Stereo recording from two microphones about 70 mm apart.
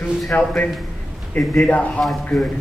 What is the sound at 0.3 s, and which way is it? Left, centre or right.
Speech, left.